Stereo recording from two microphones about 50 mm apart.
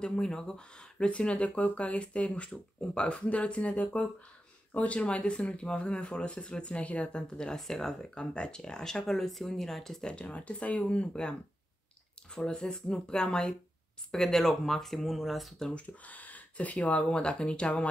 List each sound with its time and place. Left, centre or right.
0.0 s speech: centre
10.0 s speech: left; by 15.7 s centre
15.7 s speech: left